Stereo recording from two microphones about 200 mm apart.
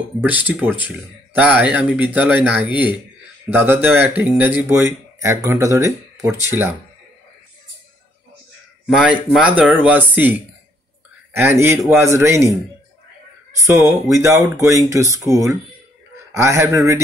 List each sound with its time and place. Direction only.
0.2 s speech: 10° right (ahead or behind)
8.8 s speech: 5° right (ahead or behind)
13.6 s speech: 15° right (ahead or behind)